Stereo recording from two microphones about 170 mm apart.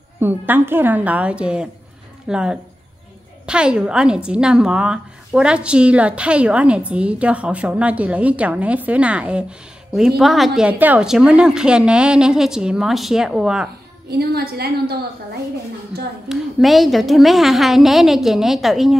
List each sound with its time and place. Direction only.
0.2 s a woman's voice: 10° right (ahead or behind)
14.1 s a woman's voice: 65° right (ahead or behind)
16.3 s a woman's voice: centre (ahead or behind)